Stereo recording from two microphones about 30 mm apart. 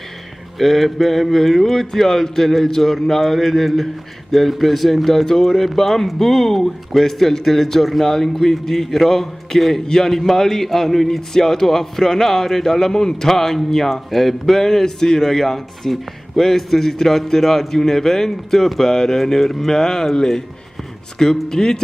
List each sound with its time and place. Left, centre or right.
0.6 s a man's voice: centre
19.4 s a man's voice: centre
19.7 s speech: centre